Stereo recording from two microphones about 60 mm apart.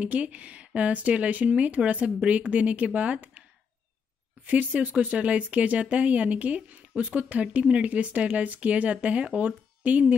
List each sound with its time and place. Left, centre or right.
0.0 s speech: right
4.5 s speech: right